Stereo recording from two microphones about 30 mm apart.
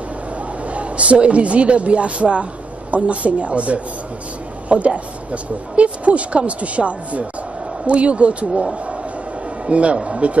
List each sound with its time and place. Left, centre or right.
0.7 s speech: right
9.7 s speech: right